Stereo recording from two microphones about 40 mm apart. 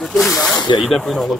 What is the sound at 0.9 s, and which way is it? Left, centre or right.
Speech, centre.